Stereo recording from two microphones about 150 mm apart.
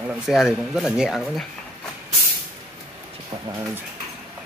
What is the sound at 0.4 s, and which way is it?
Speech, centre (ahead or behind).